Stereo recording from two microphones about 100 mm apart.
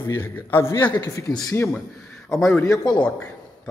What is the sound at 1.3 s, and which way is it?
Speech, 45° left (ahead or behind).